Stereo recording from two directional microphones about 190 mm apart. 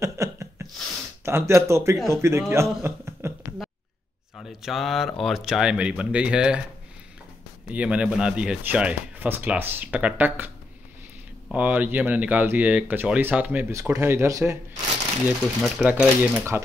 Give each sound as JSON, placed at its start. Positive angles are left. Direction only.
{"t": 0.0, "sound": "a sound", "side_deg": -15}
{"t": 1.2, "sound": "a man's voice", "side_deg": -15}
{"t": 4.4, "sound": "speech", "side_deg": 0}
{"t": 7.7, "sound": "speech", "side_deg": -5}